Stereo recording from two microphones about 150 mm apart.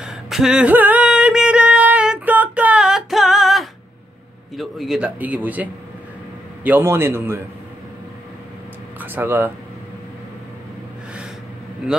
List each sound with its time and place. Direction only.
0.0 s a sound: centre (ahead or behind)
4.6 s a man's voice: centre (ahead or behind)
9.0 s a man's voice: 15° right (ahead or behind)